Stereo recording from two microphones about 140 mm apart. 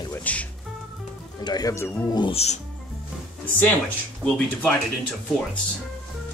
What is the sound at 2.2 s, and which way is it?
Speech, 45° left (ahead or behind).